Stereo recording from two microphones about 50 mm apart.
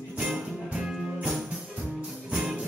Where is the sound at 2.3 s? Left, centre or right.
Centre.